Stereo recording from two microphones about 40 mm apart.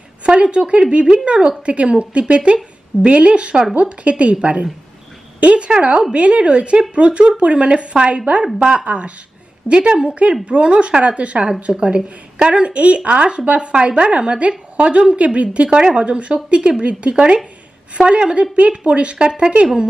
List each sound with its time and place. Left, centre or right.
0.2 s a woman's voice: right